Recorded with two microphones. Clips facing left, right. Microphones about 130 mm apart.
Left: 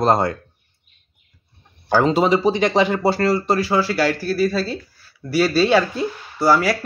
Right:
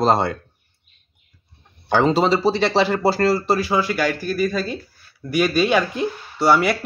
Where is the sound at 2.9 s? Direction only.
5° right (ahead or behind).